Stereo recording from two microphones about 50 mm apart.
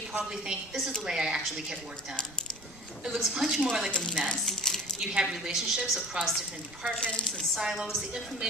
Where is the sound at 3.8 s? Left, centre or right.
Centre.